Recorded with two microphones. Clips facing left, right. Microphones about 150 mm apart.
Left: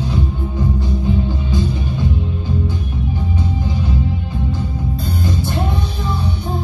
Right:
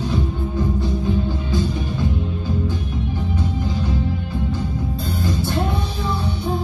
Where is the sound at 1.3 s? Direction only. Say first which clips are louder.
Left 1 dB; 20° left (ahead or behind).